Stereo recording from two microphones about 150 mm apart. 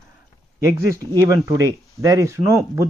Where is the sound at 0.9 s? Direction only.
20° right (ahead or behind).